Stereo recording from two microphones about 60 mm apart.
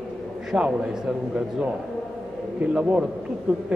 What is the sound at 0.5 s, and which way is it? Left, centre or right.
Speech, centre.